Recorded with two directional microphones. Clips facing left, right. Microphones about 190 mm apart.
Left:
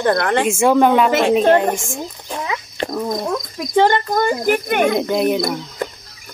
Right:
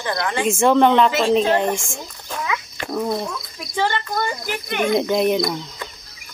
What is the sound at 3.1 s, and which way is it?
Speech, 40° left (ahead or behind).